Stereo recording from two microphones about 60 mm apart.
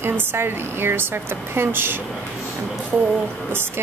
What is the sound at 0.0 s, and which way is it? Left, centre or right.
Speech, right.